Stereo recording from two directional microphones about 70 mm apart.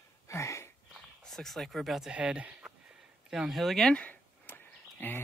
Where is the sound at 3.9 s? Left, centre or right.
Left.